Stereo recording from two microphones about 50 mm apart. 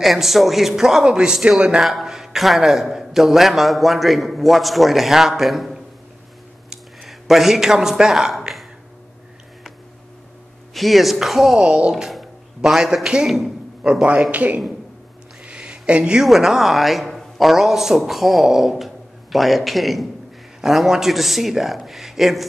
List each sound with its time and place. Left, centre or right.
0.0 s a man's voice: centre
7.1 s speech: centre
10.7 s a man's voice: centre
11.6 s speech: right
12.1 s speech: centre
13.3 s a sound: centre
14.3 s speech: right
15.4 s a sound: centre
15.9 s speech: right
16.2 s a man's voice: centre